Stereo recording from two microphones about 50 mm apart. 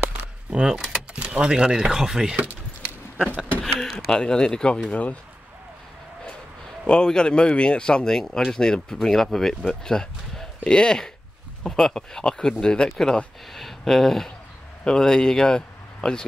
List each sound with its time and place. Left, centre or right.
0.5 s speech: centre
0.7 s speech: centre
1.1 s speech: right
3.6 s speech: centre
4.1 s speech: centre
6.9 s speech: centre